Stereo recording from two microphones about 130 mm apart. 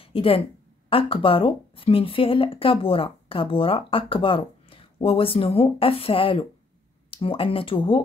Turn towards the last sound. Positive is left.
turn(degrees=40)  # may be behind; listen again after turning